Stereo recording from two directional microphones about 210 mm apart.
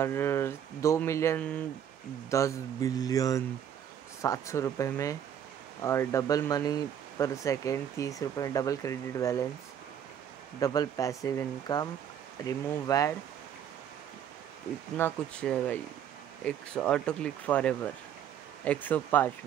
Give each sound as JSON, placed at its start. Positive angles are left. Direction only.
{"t": 0.0, "sound": "speech", "side_deg": 10}
{"t": 10.6, "sound": "speech", "side_deg": 15}
{"t": 15.0, "sound": "speech", "side_deg": 10}